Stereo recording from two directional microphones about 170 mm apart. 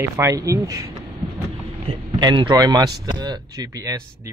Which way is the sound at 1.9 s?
25° right (ahead or behind).